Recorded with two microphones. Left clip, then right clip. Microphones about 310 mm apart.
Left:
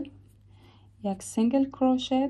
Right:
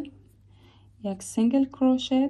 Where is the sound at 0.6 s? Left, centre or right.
Left.